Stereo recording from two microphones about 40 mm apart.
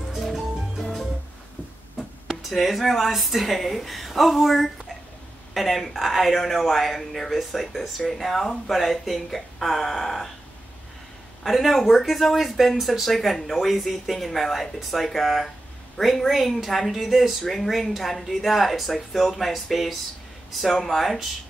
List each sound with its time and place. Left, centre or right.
0.2 s music: centre
2.5 s speech: centre
11.4 s speech: centre